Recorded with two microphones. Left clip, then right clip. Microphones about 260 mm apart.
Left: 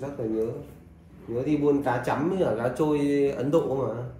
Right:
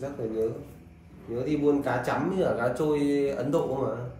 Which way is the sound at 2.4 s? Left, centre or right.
Left.